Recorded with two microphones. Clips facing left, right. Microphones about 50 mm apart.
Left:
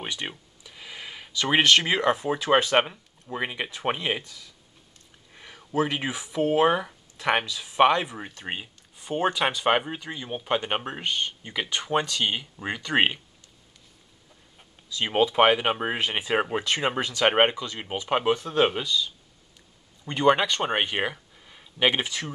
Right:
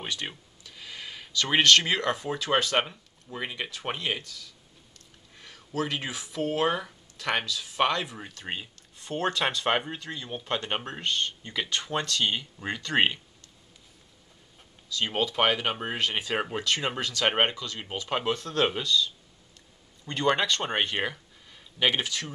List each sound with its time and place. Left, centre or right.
0.0 s speech: centre
14.9 s speech: left